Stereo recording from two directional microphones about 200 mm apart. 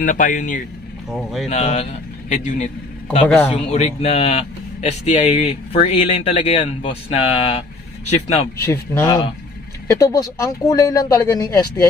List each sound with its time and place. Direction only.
0.0 s a man's voice: 40° left (ahead or behind)
8.5 s speech: 15° left (ahead or behind)